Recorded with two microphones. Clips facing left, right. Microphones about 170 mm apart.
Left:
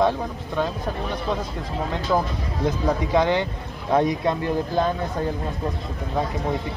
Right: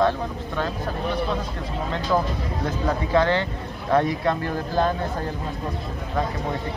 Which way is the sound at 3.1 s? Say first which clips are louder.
Right 1 dB; 15° left (ahead or behind).